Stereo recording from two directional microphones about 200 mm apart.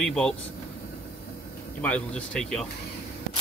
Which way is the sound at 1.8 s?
5° left (ahead or behind).